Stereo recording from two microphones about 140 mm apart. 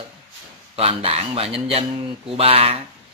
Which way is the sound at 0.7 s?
45° right (ahead or behind).